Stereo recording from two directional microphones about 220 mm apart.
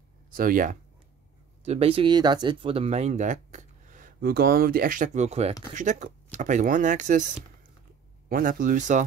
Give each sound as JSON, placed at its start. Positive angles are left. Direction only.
{"t": 0.3, "sound": "speech", "side_deg": -40}
{"t": 1.6, "sound": "speech", "side_deg": -30}